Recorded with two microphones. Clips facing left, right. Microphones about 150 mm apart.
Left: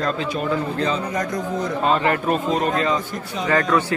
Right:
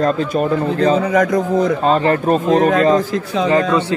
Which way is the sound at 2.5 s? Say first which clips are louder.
Right 11 dB; 90° right.